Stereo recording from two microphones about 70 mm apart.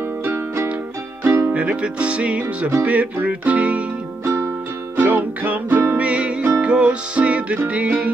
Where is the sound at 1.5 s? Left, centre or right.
Centre.